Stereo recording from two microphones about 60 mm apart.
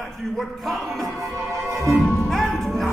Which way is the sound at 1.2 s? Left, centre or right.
Right.